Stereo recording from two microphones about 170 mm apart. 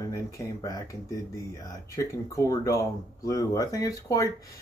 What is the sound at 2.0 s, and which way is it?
Speech, 20° left (ahead or behind).